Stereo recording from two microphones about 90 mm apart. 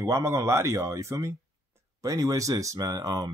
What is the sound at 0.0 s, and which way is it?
Speech, 35° right (ahead or behind).